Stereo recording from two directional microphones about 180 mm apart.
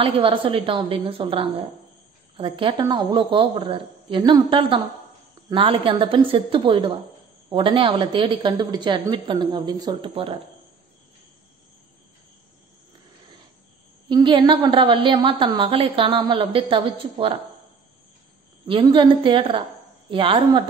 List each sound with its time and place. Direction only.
0.0 s a woman's voice: 30° right (ahead or behind)
14.0 s a woman's voice: 25° right (ahead or behind)
18.7 s a woman's voice: 25° right (ahead or behind)